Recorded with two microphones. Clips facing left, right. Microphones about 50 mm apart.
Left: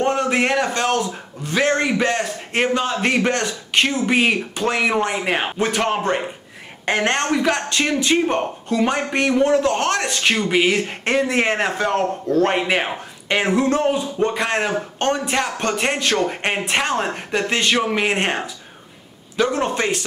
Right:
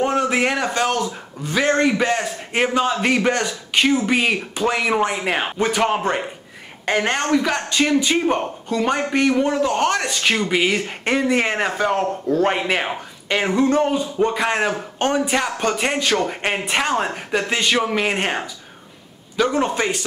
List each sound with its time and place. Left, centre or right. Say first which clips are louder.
0.0 s a man's voice: even; centre
11.9 s speech: left 1 dB; centre
12.4 s a man's voice: left 1 dB; centre